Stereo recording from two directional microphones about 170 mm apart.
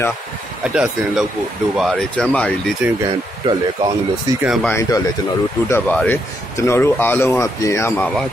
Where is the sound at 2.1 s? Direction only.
5° left (ahead or behind).